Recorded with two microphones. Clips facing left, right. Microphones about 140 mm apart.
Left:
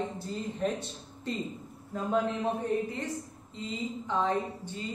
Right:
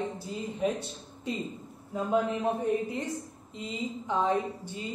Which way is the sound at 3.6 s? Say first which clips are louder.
Even; 15° right (ahead or behind).